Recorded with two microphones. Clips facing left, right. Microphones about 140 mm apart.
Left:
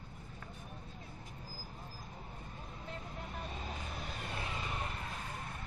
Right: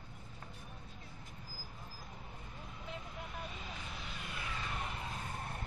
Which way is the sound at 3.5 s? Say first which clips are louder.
Left 3 dB; 40° left (ahead or behind).